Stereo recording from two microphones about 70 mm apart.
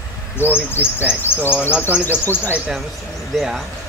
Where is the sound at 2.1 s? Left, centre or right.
Left.